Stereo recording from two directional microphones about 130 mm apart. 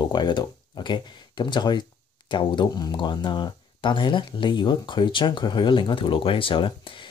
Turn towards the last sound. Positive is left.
turn(degrees=40)  # may be behind; listen again after turning